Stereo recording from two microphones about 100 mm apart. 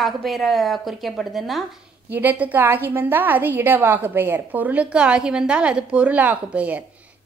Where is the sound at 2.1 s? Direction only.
20° right (ahead or behind).